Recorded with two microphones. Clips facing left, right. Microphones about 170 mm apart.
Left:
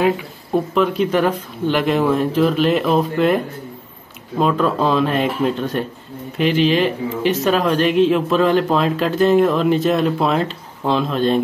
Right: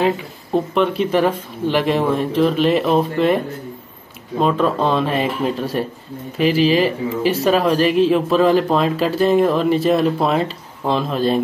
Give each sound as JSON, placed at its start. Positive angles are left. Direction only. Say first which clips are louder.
{"t": 0.7, "sound": "speech", "louder": "even", "side_deg": 0}